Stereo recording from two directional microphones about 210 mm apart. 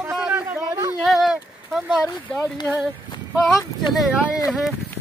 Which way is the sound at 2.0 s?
10° left (ahead or behind).